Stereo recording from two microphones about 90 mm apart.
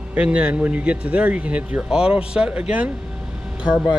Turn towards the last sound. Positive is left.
turn(degrees=-10)  # may be behind; listen again after turning